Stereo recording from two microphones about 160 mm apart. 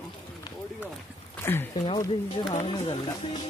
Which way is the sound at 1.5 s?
15° left (ahead or behind).